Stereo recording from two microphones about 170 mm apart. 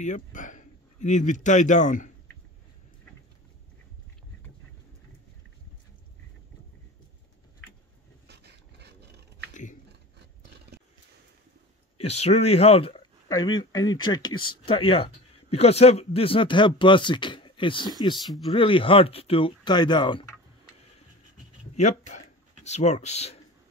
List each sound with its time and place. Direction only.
0.0 s speech: 45° left (ahead or behind)
8.3 s dog: 80° right
9.5 s a sound: 45° left (ahead or behind)
12.0 s speech: 40° left (ahead or behind)
21.7 s speech: 45° left (ahead or behind)